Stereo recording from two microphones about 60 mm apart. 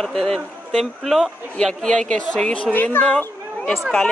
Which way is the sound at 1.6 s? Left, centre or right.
Centre.